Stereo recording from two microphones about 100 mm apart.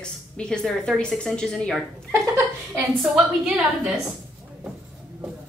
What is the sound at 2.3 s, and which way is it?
Speech, 30° right (ahead or behind).